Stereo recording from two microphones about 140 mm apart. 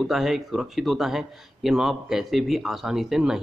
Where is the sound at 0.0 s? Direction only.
5° right (ahead or behind).